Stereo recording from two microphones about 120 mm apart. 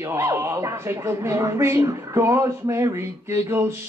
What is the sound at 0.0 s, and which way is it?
Speech, 25° right (ahead or behind).